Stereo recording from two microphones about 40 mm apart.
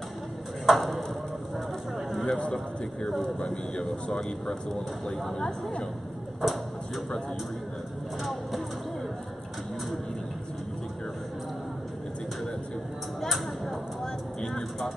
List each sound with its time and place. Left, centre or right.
0.7 s tick-tock: centre
2.0 s a sound: centre
3.3 s speech: left
6.4 s speech: centre
8.2 s speech: centre
13.2 s a sound: centre
14.0 s vehicle: centre